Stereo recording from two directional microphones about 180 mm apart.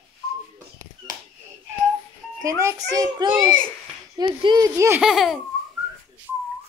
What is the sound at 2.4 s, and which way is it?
A child's voice, 20° right (ahead or behind).